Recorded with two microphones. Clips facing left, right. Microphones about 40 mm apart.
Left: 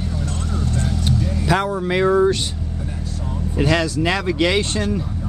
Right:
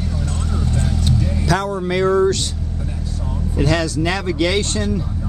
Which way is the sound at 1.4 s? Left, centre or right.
Left.